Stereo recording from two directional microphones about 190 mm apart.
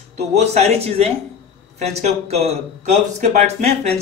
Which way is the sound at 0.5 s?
35° right (ahead or behind).